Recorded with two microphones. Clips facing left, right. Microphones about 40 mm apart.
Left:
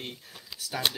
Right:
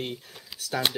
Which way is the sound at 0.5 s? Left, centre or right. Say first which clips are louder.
Right 1 dB; centre.